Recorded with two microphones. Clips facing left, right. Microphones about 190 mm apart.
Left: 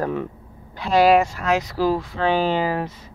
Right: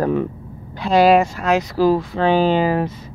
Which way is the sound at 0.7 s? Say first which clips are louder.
Right 2 dB; 25° right (ahead or behind).